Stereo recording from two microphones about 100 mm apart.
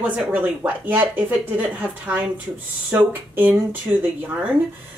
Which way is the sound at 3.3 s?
15° right (ahead or behind).